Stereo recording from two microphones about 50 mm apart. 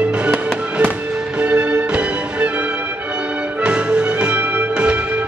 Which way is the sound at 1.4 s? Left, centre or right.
Right.